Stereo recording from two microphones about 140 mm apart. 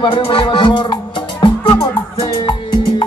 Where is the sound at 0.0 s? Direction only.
35° left (ahead or behind).